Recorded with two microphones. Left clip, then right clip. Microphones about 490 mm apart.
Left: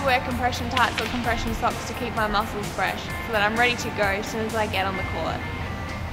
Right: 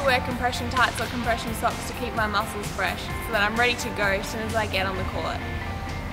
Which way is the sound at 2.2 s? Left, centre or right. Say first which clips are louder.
Left 1 dB; left.